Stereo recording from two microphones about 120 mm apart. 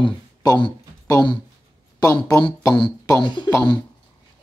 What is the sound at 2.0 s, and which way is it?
Speech, 25° left (ahead or behind).